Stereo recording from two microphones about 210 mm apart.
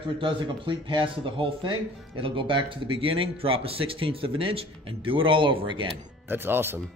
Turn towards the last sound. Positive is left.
turn(degrees=-10)  # may be behind; listen again after turning